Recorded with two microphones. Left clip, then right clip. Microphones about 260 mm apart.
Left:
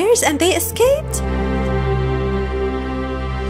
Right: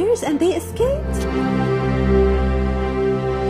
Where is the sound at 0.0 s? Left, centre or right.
Left.